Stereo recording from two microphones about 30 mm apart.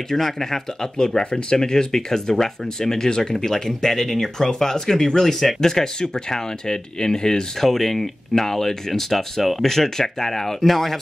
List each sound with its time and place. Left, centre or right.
0.2 s speech: centre
0.9 s speech: left
7.6 s speech: centre